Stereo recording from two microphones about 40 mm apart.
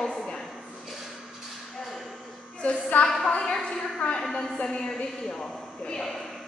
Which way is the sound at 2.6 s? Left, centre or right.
Left.